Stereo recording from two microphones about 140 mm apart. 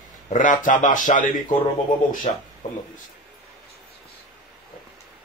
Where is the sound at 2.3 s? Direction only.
55° left (ahead or behind).